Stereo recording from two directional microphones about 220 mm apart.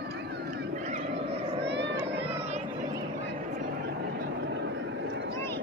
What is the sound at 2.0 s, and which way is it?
Vehicle, 25° right (ahead or behind).